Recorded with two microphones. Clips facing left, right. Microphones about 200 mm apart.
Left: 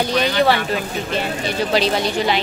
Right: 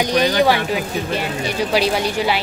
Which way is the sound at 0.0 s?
15° right (ahead or behind).